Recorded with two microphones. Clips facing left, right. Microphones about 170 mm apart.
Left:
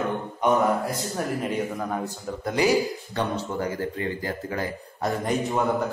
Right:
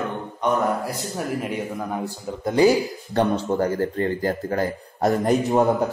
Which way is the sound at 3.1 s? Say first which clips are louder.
Right 10 dB; 50° right (ahead or behind).